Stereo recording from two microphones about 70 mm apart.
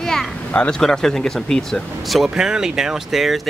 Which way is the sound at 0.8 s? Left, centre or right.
Centre.